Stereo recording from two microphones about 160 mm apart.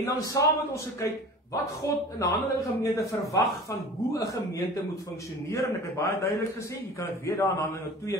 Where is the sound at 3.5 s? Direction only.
20° left (ahead or behind).